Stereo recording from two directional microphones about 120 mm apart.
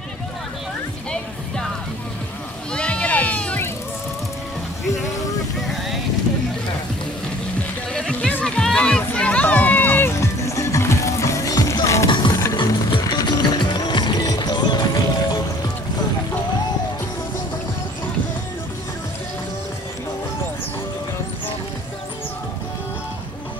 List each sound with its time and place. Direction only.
2.7 s sheep: 10° left (ahead or behind)
5.6 s vehicle: centre (ahead or behind)
7.9 s a sound: 10° left (ahead or behind); by 12.1 s 25° left (ahead or behind)
12.1 s music: 40° left (ahead or behind)